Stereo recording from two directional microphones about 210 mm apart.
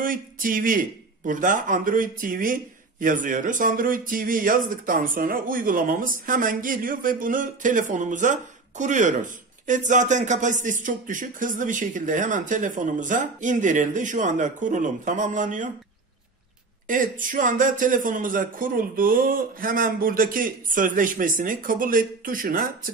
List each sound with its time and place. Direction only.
0.0 s a man's voice: 40° right (ahead or behind)
16.8 s a man's voice: 40° right (ahead or behind)